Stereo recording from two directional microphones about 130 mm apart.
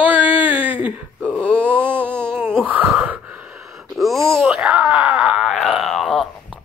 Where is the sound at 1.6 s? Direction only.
15° right (ahead or behind).